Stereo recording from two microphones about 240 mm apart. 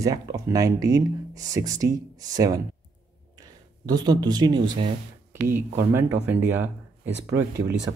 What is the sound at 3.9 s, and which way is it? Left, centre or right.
Speech, centre.